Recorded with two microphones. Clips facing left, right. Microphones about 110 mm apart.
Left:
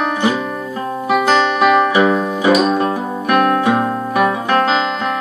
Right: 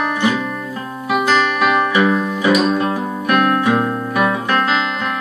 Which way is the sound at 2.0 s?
30° left (ahead or behind).